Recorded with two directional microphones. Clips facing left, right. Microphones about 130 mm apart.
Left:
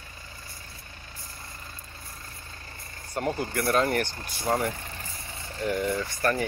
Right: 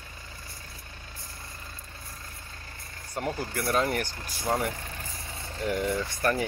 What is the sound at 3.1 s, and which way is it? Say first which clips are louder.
Speech: left 3 dB; centre (ahead or behind).